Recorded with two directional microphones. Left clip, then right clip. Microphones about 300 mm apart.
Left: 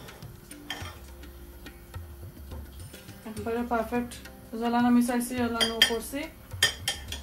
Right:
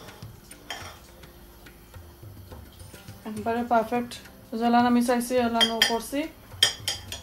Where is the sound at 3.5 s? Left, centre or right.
Right.